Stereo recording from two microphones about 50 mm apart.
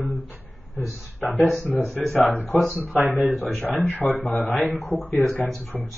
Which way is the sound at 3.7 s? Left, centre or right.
Left.